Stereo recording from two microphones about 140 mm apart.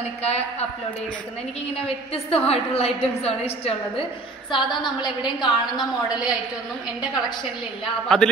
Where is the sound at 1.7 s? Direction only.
45° left (ahead or behind).